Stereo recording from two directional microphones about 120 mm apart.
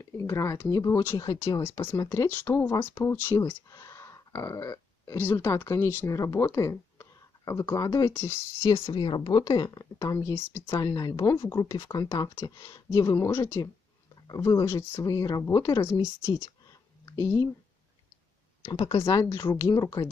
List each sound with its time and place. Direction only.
0.0 s speech: 25° left (ahead or behind)
1.6 s speech: 20° left (ahead or behind)
9.0 s speech: 40° left (ahead or behind); by 10.6 s 20° left (ahead or behind)
10.6 s speech: 35° left (ahead or behind)
18.6 s speech: 35° left (ahead or behind)